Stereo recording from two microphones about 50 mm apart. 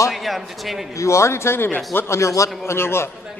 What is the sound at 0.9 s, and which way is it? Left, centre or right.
Speech, left.